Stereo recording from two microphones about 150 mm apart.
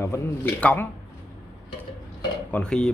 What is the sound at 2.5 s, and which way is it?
Speech, 5° left (ahead or behind).